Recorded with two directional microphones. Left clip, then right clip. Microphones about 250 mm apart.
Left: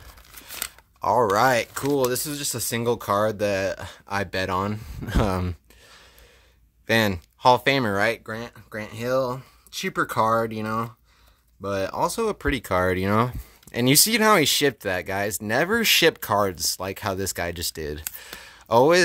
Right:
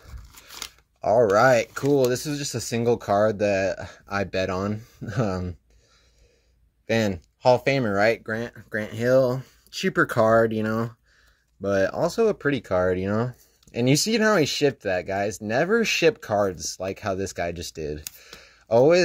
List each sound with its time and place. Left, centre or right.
0.6 s speech: centre
6.9 s speech: centre